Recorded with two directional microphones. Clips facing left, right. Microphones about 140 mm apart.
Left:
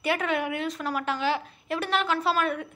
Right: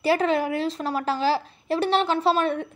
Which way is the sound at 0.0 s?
30° right (ahead or behind).